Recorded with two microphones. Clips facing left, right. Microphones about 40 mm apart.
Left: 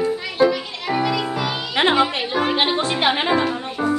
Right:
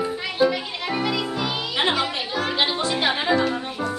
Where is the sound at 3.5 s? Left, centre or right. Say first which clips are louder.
Left 4 dB; centre.